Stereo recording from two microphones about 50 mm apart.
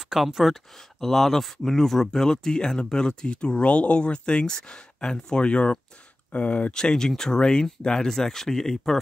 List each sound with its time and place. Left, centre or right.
0.1 s speech: centre; by 6.7 s left
6.7 s speech: centre